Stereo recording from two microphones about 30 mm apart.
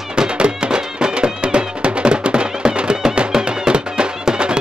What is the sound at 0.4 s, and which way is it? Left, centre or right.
Music, right.